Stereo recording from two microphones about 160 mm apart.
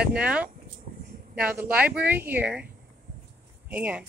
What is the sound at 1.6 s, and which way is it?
Speech, 10° right (ahead or behind).